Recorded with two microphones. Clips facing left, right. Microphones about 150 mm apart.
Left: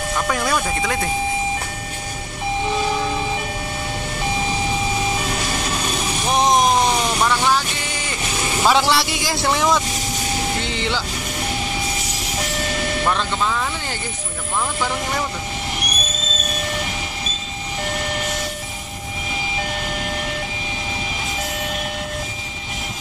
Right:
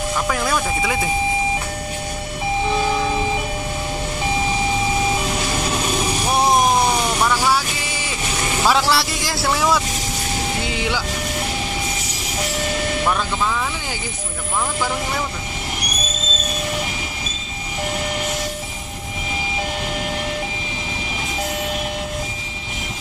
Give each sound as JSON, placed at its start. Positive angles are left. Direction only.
{"t": 0.1, "sound": "speech", "side_deg": 0}
{"t": 6.2, "sound": "vehicle", "side_deg": -10}
{"t": 8.7, "sound": "speech", "side_deg": 0}
{"t": 13.0, "sound": "speech", "side_deg": -5}